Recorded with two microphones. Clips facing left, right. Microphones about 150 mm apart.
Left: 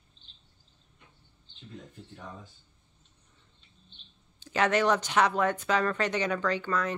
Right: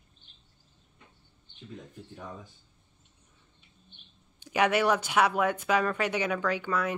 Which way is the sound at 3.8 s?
15° right (ahead or behind).